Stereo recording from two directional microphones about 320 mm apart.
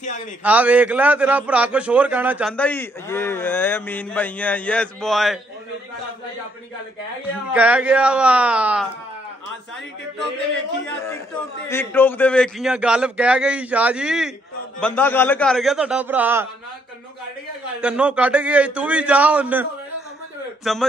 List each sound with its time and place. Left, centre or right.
0.4 s a man's voice: centre
7.5 s a man's voice: centre
11.7 s a man's voice: centre
17.7 s a man's voice: centre